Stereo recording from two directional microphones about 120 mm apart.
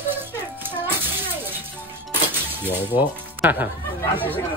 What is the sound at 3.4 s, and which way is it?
Speech, 15° right (ahead or behind).